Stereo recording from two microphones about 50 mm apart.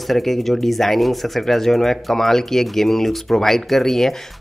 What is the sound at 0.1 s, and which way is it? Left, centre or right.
Speech, centre.